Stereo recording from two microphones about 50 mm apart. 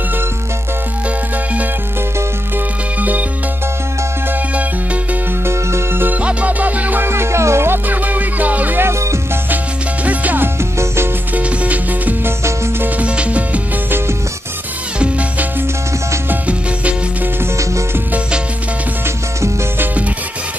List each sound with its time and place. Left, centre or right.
3.0 s music: right
5.4 s music: right
6.2 s music: right
7.0 s music: right
7.9 s music: right
10.0 s music: right
10.4 s music: right
11.3 s music: right
13.8 s music: right
15.0 s music: right